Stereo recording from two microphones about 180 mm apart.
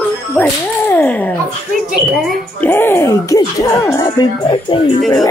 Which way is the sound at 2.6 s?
10° left (ahead or behind).